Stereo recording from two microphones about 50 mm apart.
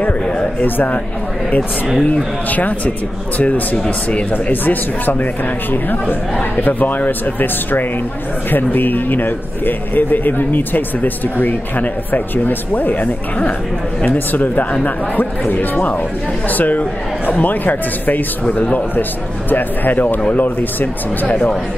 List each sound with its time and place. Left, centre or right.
0.0 s a sound: left
0.7 s a man's voice: left
1.9 s speech: centre
2.5 s a man's voice: left
3.7 s speech: centre
4.3 s a man's voice: left
18.5 s a man's voice: left